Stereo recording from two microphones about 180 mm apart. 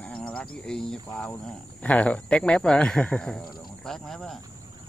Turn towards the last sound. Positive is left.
turn(degrees=0)  # may be behind; listen again after turning